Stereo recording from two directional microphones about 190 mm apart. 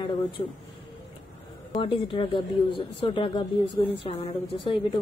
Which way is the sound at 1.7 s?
25° left (ahead or behind).